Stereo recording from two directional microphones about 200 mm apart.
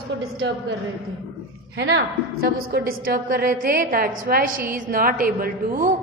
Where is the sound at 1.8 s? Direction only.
65° right (ahead or behind).